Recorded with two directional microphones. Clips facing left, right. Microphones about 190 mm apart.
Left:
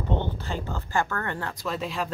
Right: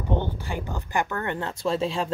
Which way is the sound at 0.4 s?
15° right (ahead or behind).